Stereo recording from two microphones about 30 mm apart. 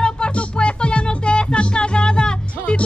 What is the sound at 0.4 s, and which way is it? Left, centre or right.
Music, left.